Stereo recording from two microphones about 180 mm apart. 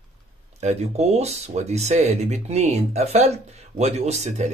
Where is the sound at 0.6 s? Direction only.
35° right (ahead or behind).